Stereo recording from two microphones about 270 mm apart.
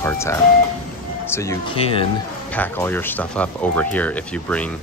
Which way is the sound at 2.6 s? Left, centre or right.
Centre.